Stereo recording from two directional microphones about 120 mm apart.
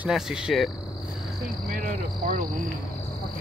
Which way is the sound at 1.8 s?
90° right.